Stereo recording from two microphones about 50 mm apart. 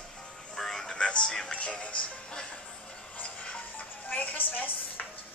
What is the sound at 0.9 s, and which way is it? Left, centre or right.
Music, centre.